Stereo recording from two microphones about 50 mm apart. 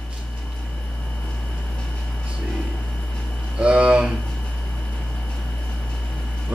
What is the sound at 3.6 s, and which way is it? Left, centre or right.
Speech, right.